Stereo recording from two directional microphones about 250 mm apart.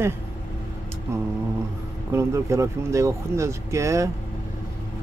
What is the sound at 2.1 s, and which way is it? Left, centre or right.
Speech, centre.